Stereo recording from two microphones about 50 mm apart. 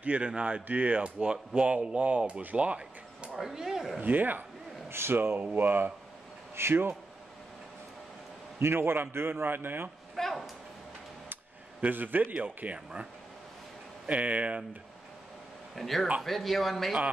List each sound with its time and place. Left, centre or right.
0.0 s speech: right
3.3 s speech: centre
4.0 s a man's voice: right
4.8 s a man's voice: right
6.5 s speech: right
8.5 s a man's voice: right
10.1 s a sound: centre
11.8 s a man's voice: right
15.7 s speech: centre